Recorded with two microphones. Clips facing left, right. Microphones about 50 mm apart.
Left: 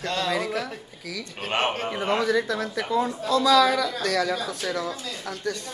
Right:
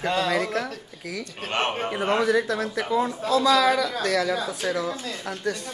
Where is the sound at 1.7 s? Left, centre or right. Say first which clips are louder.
Right 1 dB; centre.